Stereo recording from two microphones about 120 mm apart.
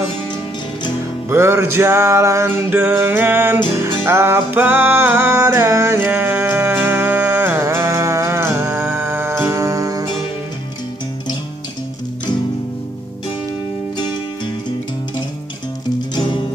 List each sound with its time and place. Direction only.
1.3 s music: 20° right (ahead or behind)
16.2 s music: 40° left (ahead or behind)